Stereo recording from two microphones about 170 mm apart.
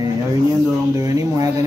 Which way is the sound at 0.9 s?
20° right (ahead or behind).